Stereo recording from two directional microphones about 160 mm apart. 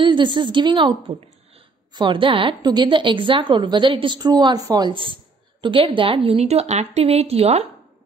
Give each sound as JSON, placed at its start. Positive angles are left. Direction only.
{"t": 0.0, "sound": "a woman's voice", "side_deg": -30}